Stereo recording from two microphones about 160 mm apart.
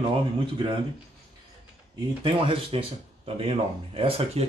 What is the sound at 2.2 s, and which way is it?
Speech, 35° right (ahead or behind).